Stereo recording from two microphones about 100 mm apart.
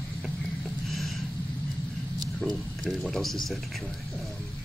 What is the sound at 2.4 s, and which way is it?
A man's voice, centre (ahead or behind).